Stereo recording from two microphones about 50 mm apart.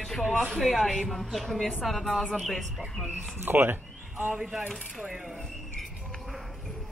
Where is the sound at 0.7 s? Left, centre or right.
Centre.